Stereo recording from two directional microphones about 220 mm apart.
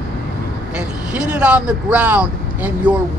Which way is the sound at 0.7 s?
5° right (ahead or behind).